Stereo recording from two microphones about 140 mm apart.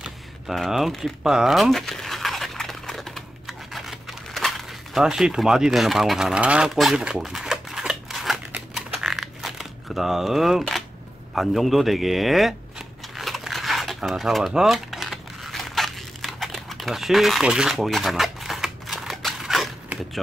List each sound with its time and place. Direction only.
0.0 s typing: 5° right (ahead or behind)
8.5 s crumpling: 5° right (ahead or behind)
11.3 s a sound: centre (ahead or behind)